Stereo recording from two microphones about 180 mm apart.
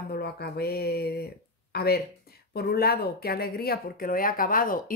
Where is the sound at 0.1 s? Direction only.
60° left (ahead or behind).